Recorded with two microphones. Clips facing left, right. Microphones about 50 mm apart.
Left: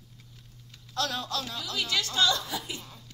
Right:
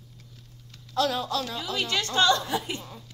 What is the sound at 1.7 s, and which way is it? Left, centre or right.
A woman's voice, right.